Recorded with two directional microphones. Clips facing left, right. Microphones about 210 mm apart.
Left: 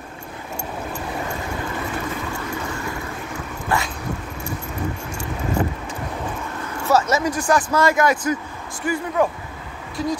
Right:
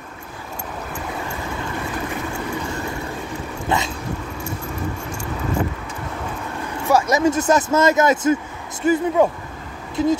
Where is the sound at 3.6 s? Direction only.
20° right (ahead or behind).